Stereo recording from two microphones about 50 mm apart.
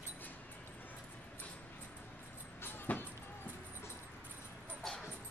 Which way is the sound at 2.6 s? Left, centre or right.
Left.